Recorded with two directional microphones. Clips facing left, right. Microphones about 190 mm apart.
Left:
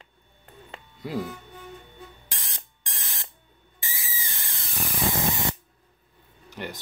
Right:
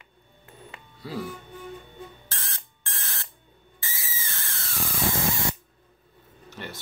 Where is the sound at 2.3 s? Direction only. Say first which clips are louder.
Right 2 dB; 15° left (ahead or behind).